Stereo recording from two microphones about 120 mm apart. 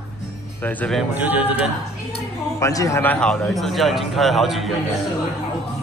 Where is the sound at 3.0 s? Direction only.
10° left (ahead or behind).